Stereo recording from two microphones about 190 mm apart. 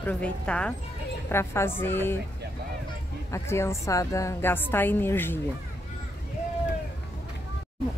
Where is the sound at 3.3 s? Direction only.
15° left (ahead or behind).